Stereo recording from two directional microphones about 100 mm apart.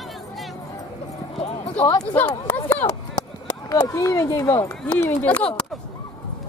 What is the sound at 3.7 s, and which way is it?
Speech, 35° left (ahead or behind).